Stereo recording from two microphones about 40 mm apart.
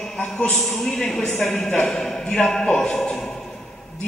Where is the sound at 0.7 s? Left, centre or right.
Centre.